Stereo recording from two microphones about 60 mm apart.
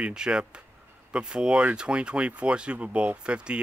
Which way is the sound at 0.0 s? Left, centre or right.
Centre.